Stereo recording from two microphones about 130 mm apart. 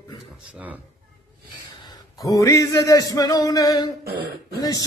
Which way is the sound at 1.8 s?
25° left (ahead or behind).